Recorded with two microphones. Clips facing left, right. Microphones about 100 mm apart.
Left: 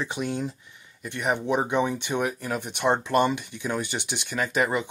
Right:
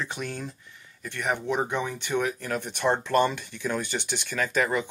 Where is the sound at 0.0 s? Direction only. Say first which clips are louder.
Left 5 dB; 15° left (ahead or behind).